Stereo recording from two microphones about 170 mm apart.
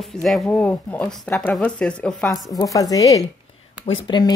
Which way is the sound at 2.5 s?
20° left (ahead or behind).